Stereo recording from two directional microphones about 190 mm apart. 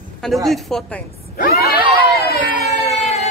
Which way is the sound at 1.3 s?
50° left (ahead or behind).